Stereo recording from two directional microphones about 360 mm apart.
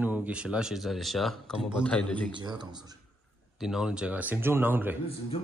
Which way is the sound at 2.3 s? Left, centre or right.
Centre.